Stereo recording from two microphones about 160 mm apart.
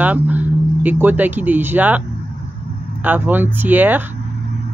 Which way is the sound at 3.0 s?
10° right (ahead or behind).